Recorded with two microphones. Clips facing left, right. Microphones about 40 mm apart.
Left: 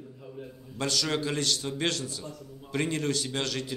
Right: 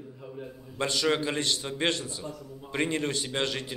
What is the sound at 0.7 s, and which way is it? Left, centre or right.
Speech, right.